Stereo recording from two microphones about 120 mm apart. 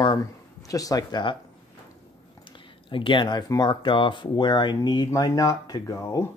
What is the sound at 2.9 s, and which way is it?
Speech, 45° left (ahead or behind).